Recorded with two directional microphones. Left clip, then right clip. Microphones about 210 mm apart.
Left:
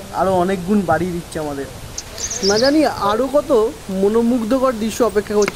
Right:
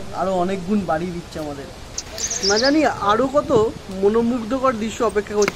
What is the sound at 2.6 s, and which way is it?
Speech, 45° left (ahead or behind).